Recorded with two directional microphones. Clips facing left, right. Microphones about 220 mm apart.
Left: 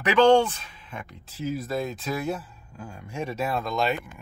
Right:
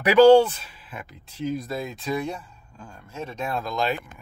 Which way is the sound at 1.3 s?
5° left (ahead or behind).